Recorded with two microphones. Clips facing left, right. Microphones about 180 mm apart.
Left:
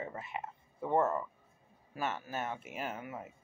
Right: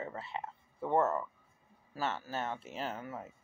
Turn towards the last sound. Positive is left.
turn(degrees=10)  # may be behind; listen again after turning